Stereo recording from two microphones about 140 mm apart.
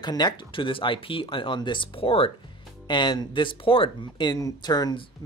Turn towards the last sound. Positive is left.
turn(degrees=30)  # may be behind; listen again after turning